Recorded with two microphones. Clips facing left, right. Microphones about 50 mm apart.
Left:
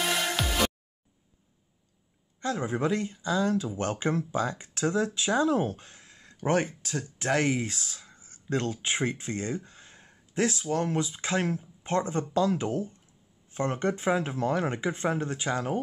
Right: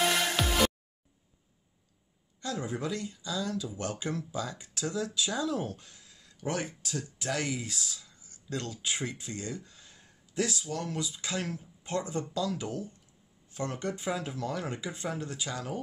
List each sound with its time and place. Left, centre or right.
0.0 s music: centre
2.4 s speech: left